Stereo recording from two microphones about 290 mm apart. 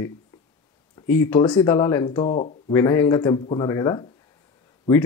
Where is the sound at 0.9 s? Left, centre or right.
Centre.